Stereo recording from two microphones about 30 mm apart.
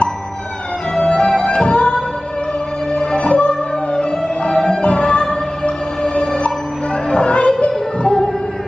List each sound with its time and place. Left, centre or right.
0.9 s music: left